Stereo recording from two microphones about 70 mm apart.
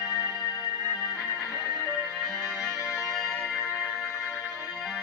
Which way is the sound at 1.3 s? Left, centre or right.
Centre.